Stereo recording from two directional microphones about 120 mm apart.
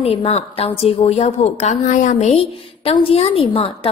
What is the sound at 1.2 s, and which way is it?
A woman's voice, 70° left (ahead or behind).